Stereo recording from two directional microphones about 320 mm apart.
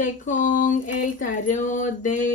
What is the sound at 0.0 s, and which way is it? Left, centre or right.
Speech, left.